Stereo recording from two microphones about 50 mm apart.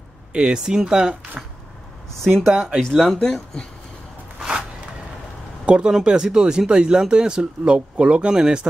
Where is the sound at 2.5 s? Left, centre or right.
Centre.